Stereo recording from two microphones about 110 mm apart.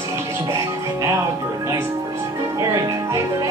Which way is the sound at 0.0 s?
25° right (ahead or behind).